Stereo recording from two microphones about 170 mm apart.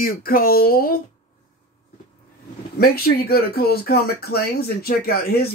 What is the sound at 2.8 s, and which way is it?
Speech, 65° left (ahead or behind).